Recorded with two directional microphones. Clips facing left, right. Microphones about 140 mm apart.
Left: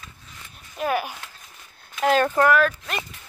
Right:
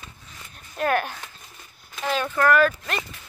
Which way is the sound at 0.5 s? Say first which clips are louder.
Right 1 dB; 5° left (ahead or behind).